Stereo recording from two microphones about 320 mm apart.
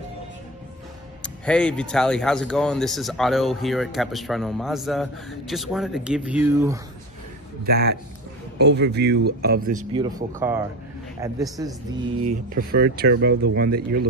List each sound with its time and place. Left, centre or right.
1.2 s speech: centre
7.6 s speech: right
9.9 s speech: centre
12.3 s speech: right